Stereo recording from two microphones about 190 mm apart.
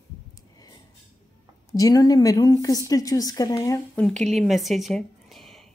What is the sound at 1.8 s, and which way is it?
A woman's voice, 20° left (ahead or behind).